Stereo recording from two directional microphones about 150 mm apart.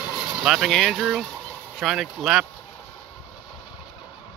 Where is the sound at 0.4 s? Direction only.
Centre (ahead or behind).